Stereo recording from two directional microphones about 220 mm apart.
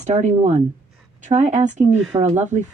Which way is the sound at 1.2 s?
30° right (ahead or behind).